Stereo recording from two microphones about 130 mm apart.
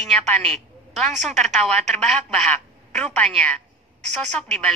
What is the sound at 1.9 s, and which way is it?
A woman's voice, 5° left (ahead or behind).